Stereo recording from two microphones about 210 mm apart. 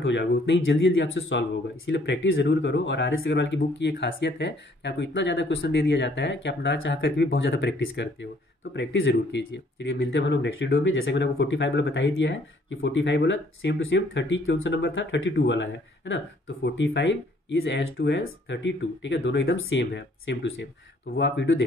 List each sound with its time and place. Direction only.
0.0 s speech: 60° left (ahead or behind)